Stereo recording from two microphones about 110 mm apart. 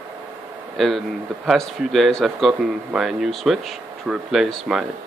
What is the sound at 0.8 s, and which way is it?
Speech, centre (ahead or behind).